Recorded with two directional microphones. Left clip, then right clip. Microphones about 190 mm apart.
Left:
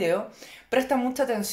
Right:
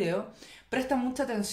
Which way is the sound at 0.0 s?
30° left (ahead or behind).